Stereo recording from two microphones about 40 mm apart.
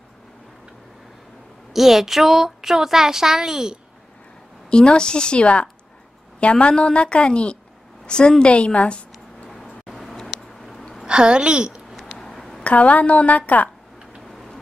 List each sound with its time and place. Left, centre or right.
1.7 s speech: centre
4.6 s a woman's voice: left
9.8 s a sound: centre
11.1 s a woman's voice: right
12.4 s a sound: centre
12.6 s a woman's voice: left
14.2 s vehicle: centre